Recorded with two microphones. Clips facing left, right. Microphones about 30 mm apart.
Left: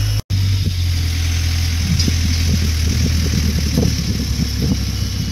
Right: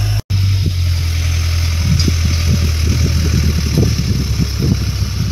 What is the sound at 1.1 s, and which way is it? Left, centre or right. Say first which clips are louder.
Vehicle: right 1 dB; centre.